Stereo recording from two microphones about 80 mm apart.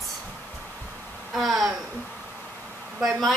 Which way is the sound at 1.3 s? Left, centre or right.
Centre.